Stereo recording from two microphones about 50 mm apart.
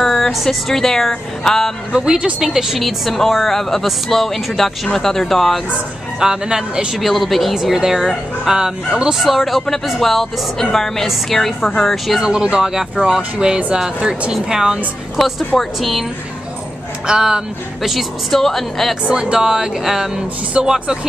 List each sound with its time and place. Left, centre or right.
0.0 s speech: centre
1.9 s speech: centre
2.5 s speech: centre
6.1 s speech: centre
7.0 s speech: centre
9.2 s speech: centre
12.2 s speech: centre
15.1 s speech: centre
17.1 s speech: centre
17.8 s speech: centre
19.0 s speech: centre